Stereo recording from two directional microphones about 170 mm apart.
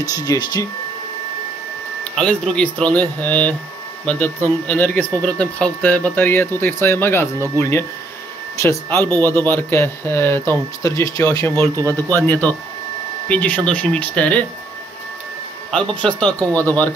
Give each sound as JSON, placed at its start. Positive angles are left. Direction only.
{"t": 0.1, "sound": "speech", "side_deg": 20}
{"t": 2.1, "sound": "speech", "side_deg": 5}
{"t": 15.7, "sound": "speech", "side_deg": 5}